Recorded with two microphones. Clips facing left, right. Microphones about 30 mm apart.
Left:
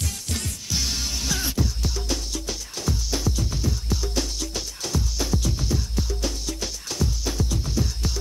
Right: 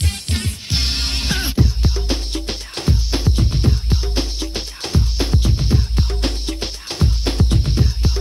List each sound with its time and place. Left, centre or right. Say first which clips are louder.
0.0 s music: right 6 dB; right
2.3 s music: right 5 dB; right